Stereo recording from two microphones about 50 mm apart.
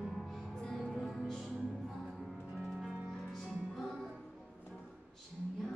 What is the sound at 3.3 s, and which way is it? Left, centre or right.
Music, centre.